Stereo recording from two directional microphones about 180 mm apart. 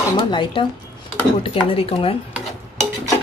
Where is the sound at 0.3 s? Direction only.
25° left (ahead or behind).